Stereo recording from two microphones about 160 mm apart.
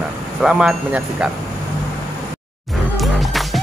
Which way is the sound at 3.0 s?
Centre (ahead or behind).